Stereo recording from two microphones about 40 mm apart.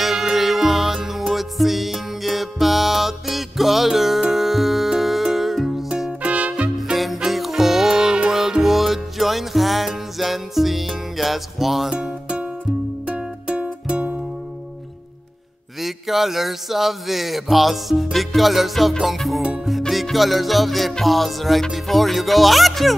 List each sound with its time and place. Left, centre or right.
0.0 s music: centre
6.2 s music: right
7.2 s music: centre
11.9 s music: centre
15.8 s a sound: centre
18.1 s music: centre